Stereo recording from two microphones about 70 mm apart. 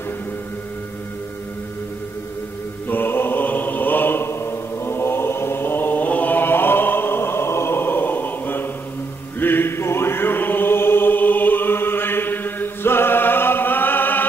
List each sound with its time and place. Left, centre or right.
2.9 s mantra: left
9.4 s chant: left